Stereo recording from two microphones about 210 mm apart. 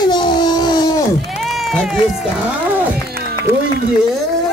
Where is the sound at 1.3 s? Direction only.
Centre (ahead or behind).